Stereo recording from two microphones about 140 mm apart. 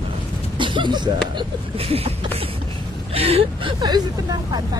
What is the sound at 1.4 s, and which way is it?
Speech, 45° right (ahead or behind).